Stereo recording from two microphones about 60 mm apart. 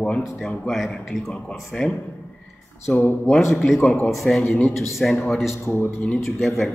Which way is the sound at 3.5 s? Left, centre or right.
Centre.